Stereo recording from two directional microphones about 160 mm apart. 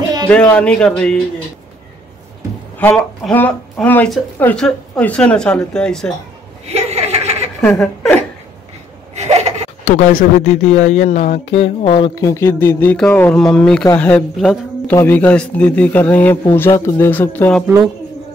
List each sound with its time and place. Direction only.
0.3 s speech: 5° left (ahead or behind)
2.8 s speech: 10° left (ahead or behind)
6.6 s chuckle: 40° right (ahead or behind)
7.6 s speech: 5° left (ahead or behind)
9.1 s laughter: 45° right (ahead or behind)
9.8 s speech: 50° left (ahead or behind); by 17.6 s 10° left (ahead or behind)